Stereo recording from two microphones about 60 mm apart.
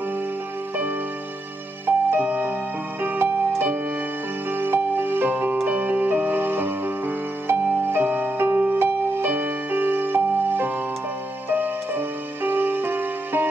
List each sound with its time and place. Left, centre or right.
1.9 s music: right